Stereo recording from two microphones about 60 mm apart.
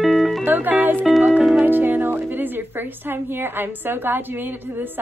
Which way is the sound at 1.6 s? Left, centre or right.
Right.